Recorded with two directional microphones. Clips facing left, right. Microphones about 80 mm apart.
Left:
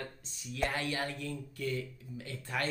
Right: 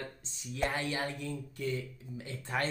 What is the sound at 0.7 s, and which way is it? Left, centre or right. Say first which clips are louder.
Speech: right 1 dB; right.